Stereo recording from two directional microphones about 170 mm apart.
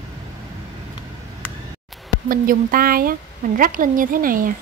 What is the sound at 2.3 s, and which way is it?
A woman's voice, 55° right (ahead or behind).